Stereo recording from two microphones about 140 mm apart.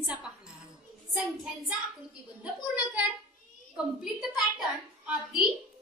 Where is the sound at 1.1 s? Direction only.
10° right (ahead or behind).